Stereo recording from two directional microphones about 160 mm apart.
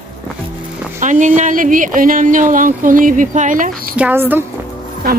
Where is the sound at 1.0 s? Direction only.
50° right (ahead or behind).